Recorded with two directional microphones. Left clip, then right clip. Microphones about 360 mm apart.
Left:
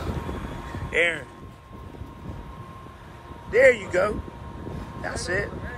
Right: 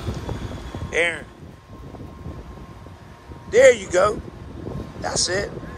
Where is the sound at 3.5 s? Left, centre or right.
Centre.